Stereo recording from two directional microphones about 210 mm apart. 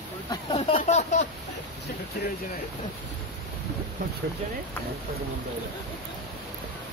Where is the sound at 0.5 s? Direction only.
25° left (ahead or behind).